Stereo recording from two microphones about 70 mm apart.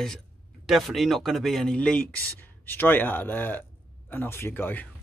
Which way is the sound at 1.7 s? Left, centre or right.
Centre.